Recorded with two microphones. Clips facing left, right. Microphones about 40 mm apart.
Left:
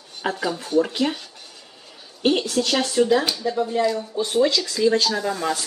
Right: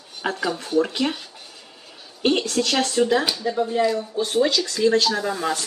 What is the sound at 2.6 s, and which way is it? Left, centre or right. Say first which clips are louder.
Speech: even; centre.